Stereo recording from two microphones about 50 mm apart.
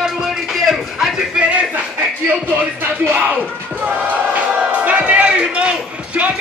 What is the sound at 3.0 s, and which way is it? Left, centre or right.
Speech, right.